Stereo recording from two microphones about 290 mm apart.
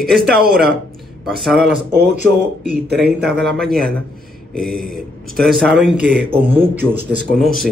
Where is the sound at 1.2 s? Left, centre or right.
Centre.